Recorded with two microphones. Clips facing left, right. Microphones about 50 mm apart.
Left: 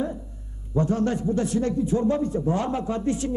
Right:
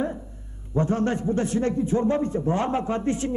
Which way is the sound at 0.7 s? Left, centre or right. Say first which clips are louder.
Even; right.